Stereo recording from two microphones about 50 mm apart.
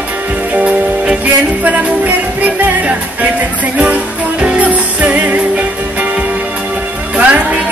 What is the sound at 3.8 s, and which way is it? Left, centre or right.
Music, right.